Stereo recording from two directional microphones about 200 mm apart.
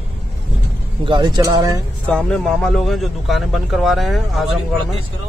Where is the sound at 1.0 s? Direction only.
25° right (ahead or behind).